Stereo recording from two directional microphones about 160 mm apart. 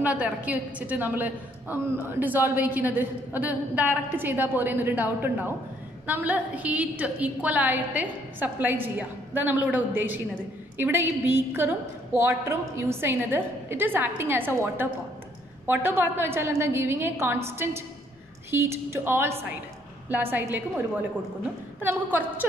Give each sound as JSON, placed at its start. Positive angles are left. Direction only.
{"t": 0.0, "sound": "a woman's voice", "side_deg": -10}
{"t": 21.7, "sound": "a woman's voice", "side_deg": -10}